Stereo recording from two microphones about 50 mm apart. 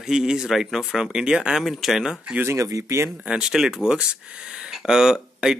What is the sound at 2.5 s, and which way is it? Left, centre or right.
Speech, right.